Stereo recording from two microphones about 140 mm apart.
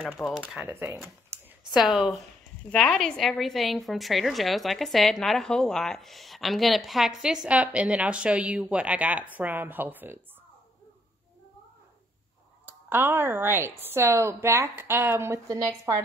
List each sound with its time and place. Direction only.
0.5 s speech: 10° right (ahead or behind)
1.7 s a woman's voice: centre (ahead or behind)
12.6 s speech: 15° right (ahead or behind)